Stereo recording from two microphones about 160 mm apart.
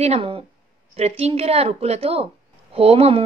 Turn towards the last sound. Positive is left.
turn(degrees=-40)  # may be behind; listen again after turning